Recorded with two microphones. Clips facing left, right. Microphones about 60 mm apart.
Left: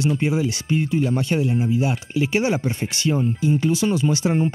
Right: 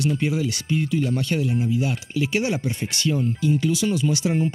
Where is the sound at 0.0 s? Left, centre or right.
Left.